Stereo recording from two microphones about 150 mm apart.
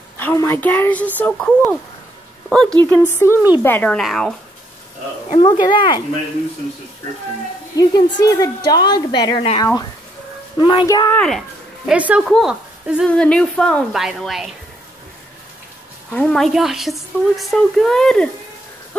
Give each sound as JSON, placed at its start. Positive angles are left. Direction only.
{"t": 0.2, "sound": "a woman's voice", "side_deg": 15}
{"t": 4.0, "sound": "a woman's voice", "side_deg": 0}
{"t": 5.4, "sound": "speech", "side_deg": 30}
{"t": 7.7, "sound": "a woman's voice", "side_deg": 25}
{"t": 10.6, "sound": "a woman's voice", "side_deg": 30}
{"t": 11.1, "sound": "speech", "side_deg": 5}
{"t": 13.1, "sound": "a woman's voice", "side_deg": 5}
{"t": 16.1, "sound": "a woman's voice", "side_deg": 5}